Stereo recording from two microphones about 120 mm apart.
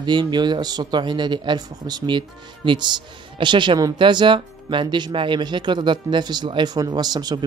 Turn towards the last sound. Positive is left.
turn(degrees=-35)  # may be behind; listen again after turning